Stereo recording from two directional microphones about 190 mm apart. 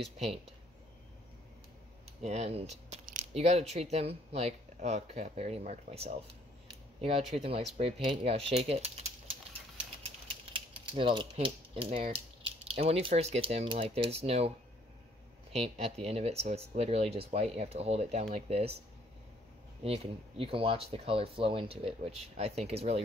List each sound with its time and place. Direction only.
2.2 s speech: 35° right (ahead or behind)
6.7 s a sound: 30° right (ahead or behind)
7.4 s speech: 30° right (ahead or behind)
10.4 s speech: 25° right (ahead or behind)
15.5 s speech: 35° right (ahead or behind)
19.8 s speech: 30° right (ahead or behind)